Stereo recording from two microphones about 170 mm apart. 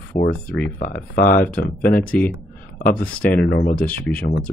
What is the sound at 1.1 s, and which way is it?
Speech, 55° left (ahead or behind).